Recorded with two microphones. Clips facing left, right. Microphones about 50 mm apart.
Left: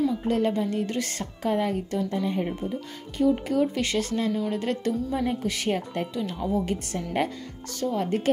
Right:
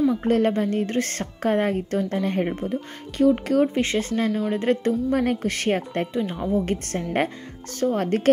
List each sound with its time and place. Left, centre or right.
0.2 s speech: right
2.2 s speech: right
3.7 s speech: right
5.1 s speech: right
6.1 s speech: right
6.6 s speech: right